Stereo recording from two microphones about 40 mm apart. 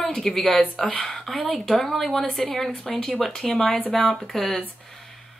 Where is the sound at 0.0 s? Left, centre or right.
Centre.